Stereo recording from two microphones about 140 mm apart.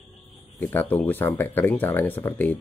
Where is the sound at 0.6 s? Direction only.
15° left (ahead or behind).